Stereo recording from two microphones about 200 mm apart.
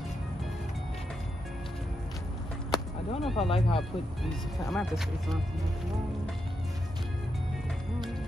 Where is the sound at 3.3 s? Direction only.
30° left (ahead or behind).